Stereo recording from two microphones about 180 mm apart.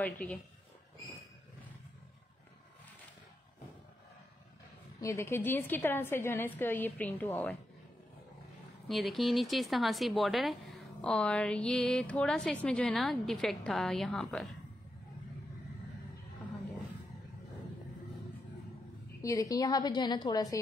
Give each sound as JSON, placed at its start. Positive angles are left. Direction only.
{"t": 0.0, "sound": "a woman's voice", "side_deg": 10}
{"t": 5.0, "sound": "a woman's voice", "side_deg": 15}
{"t": 8.8, "sound": "speech", "side_deg": 0}
{"t": 19.2, "sound": "a woman's voice", "side_deg": 20}